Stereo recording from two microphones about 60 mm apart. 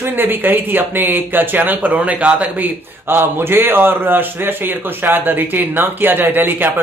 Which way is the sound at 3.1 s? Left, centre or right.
Right.